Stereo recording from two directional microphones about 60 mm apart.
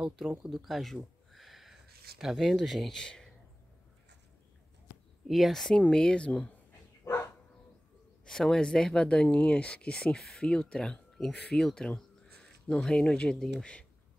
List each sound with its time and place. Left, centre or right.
0.0 s speech: centre
0.5 s a sound: centre
2.3 s speech: centre
5.3 s speech: centre
7.1 s dog: left
8.3 s speech: centre